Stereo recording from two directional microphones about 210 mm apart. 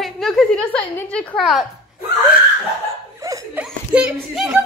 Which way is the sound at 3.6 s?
5° right (ahead or behind).